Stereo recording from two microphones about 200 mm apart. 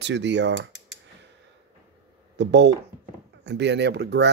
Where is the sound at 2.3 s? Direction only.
60° right (ahead or behind).